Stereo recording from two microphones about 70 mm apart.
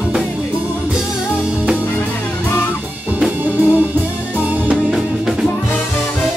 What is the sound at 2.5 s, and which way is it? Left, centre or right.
Music, left.